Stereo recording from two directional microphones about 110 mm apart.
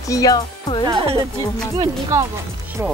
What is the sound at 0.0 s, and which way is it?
Speech, 30° left (ahead or behind).